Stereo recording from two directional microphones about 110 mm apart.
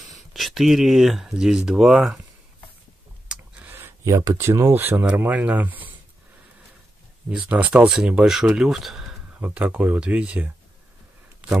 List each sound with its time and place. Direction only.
0.0 s speech: centre (ahead or behind)
3.3 s a sound: 15° right (ahead or behind); by 4.4 s 30° right (ahead or behind)
4.4 s speech: 20° right (ahead or behind)
7.2 s speech: 10° right (ahead or behind)